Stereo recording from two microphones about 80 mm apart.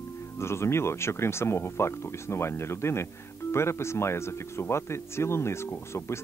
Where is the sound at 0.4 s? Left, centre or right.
Left.